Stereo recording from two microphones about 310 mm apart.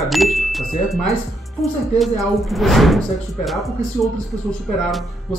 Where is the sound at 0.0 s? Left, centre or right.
Centre.